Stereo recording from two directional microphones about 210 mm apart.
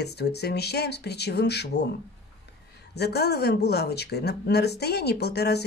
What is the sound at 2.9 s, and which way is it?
Speech, 50° left (ahead or behind).